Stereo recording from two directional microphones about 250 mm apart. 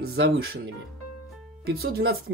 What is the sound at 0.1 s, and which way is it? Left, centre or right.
Speech, right.